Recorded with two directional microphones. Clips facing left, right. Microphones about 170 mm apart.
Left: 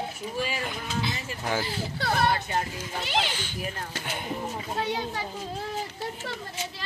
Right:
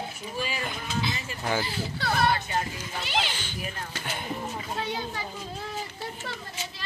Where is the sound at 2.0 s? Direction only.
35° left (ahead or behind).